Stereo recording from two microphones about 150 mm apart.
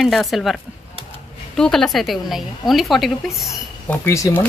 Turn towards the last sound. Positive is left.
turn(degrees=20)  # may be behind; listen again after turning